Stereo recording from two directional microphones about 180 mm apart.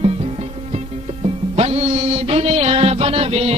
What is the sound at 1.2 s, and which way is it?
Music, 35° right (ahead or behind).